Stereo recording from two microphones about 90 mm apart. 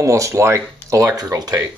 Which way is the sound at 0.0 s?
35° right (ahead or behind).